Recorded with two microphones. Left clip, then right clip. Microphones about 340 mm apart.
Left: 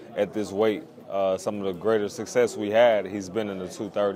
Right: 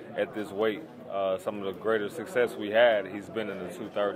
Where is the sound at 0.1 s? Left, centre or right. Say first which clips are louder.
Left 5 dB; left.